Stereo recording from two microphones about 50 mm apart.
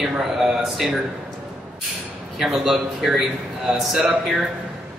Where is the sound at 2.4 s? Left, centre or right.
Centre.